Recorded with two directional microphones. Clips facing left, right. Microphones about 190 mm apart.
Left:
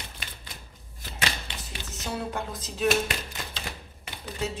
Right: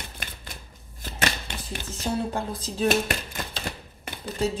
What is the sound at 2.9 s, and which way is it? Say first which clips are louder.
Typewriter: even; 50° right (ahead or behind).